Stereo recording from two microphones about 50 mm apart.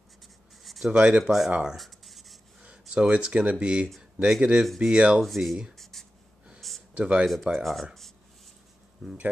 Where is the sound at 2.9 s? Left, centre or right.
Right.